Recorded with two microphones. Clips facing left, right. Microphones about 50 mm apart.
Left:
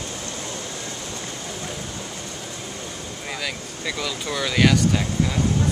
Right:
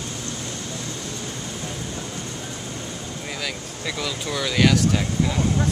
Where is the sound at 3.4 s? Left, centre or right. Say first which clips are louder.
Even; centre.